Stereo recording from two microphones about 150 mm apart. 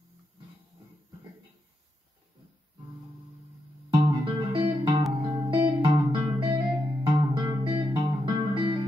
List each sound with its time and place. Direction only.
3.9 s music: 35° right (ahead or behind)